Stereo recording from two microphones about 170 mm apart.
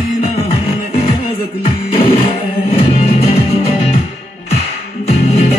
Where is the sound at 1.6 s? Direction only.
30° left (ahead or behind).